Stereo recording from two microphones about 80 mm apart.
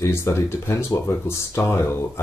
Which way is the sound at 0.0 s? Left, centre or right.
Left.